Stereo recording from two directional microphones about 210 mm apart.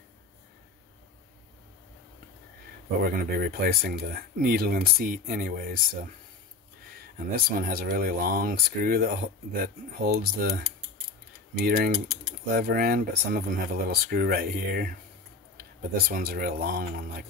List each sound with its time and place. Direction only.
3.0 s speech: 45° right (ahead or behind)
7.3 s speech: 45° right (ahead or behind)
16.1 s speech: 45° right (ahead or behind)